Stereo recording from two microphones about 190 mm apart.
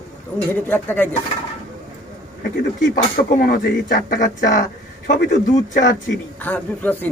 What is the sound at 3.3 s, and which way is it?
Speech, 50° left (ahead or behind).